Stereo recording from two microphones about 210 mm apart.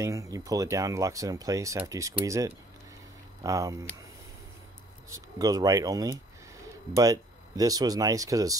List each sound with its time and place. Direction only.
0.0 s speech: 15° right (ahead or behind)
5.1 s speech: 15° right (ahead or behind)